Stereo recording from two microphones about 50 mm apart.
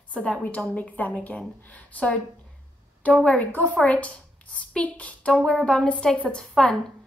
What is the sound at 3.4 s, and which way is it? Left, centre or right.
A woman's voice, left.